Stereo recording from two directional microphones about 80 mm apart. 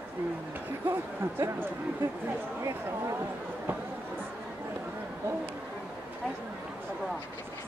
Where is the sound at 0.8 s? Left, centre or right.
Right.